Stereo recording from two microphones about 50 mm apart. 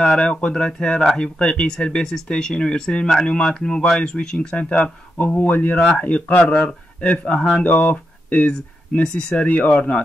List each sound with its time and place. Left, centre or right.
0.0 s speech: centre; by 5.8 s left
5.8 s speech: left
9.0 s speech: centre